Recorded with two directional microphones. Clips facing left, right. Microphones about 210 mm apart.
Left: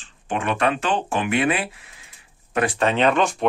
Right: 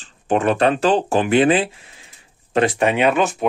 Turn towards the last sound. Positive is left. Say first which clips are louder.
# right 2 dB
turn(degrees=-5)  # may be behind; listen again after turning